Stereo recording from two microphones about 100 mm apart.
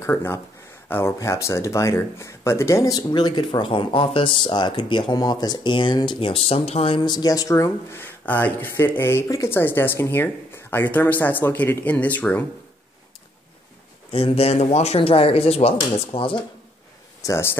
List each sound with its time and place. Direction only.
0.0 s speech: 25° left (ahead or behind); by 7.0 s 85° left
7.0 s speech: 45° left (ahead or behind); by 12.4 s 15° left (ahead or behind)
14.1 s speech: 80° left; by 16.4 s 65° left (ahead or behind)
17.2 s speech: 30° left (ahead or behind)